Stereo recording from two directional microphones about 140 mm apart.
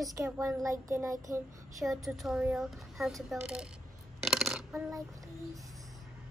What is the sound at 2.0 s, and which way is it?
Speech, centre (ahead or behind).